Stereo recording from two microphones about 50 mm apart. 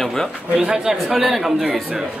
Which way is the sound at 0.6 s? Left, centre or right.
Centre.